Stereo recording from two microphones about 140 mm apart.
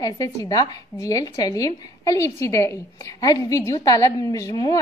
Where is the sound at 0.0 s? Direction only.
25° left (ahead or behind).